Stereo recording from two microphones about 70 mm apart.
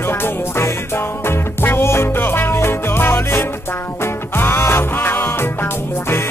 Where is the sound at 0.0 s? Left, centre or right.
Left.